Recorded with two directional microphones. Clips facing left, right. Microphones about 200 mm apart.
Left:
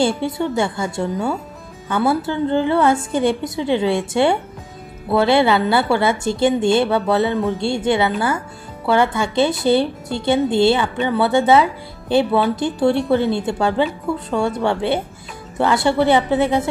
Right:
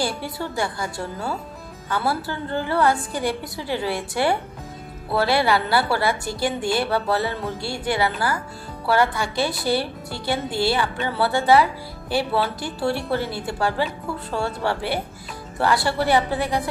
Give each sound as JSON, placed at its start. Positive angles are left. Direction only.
{"t": 0.0, "sound": "a woman's voice", "side_deg": 20}